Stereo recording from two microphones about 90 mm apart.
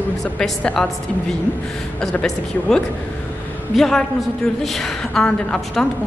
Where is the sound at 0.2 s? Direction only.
5° left (ahead or behind).